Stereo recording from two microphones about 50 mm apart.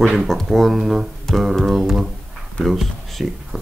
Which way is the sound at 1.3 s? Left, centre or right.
Centre.